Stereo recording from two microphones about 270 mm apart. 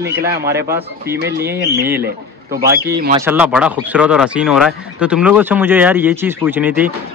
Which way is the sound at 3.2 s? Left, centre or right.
Centre.